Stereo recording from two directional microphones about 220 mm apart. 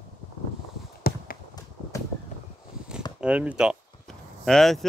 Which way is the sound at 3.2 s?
5° right (ahead or behind).